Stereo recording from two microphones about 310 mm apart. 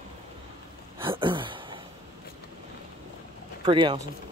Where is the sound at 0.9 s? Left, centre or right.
Centre.